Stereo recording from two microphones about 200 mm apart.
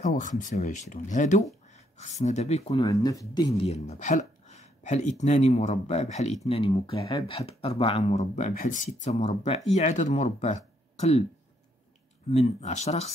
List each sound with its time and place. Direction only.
0.0 s speech: 40° left (ahead or behind)
2.8 s speech: 15° left (ahead or behind)
3.6 s speech: 35° left (ahead or behind)
12.3 s speech: 35° left (ahead or behind)